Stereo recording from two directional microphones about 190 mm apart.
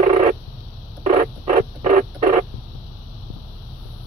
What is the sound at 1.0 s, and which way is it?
Rodents, 40° right (ahead or behind).